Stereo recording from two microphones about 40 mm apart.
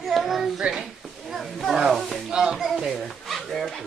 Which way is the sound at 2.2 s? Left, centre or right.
Centre.